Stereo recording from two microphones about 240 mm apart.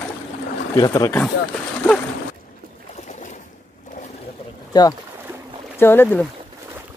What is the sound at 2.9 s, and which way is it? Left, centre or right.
Boat, left.